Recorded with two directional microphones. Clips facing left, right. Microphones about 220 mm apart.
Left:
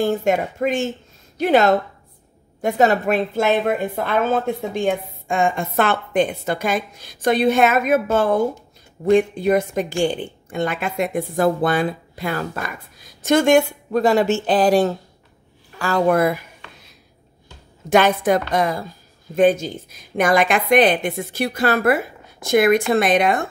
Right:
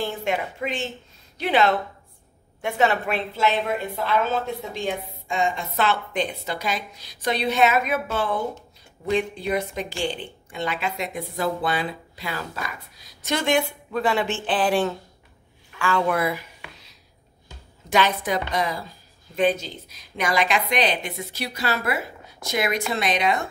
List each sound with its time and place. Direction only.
0.0 s a woman's voice: 45° left (ahead or behind)
17.8 s a woman's voice: 50° left (ahead or behind)